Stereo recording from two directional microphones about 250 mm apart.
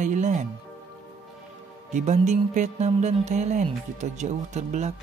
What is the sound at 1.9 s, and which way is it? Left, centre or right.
Music, right.